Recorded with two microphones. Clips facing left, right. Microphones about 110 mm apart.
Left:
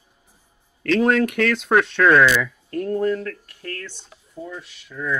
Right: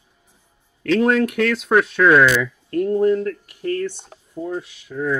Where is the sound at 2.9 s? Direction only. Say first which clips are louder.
Right 4 dB; 15° right (ahead or behind).